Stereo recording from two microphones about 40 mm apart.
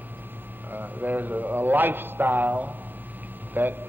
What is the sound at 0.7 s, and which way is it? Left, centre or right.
A man's voice, right.